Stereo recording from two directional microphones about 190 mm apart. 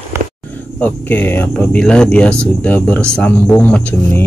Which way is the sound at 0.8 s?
10° left (ahead or behind).